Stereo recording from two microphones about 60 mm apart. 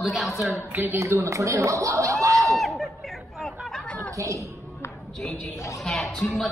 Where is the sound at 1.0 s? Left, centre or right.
Right.